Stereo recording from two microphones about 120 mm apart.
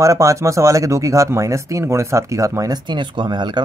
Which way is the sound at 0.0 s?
25° right (ahead or behind).